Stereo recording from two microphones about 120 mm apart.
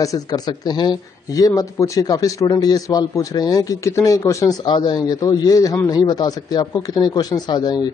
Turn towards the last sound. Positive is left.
turn(degrees=35)  # may be behind; listen again after turning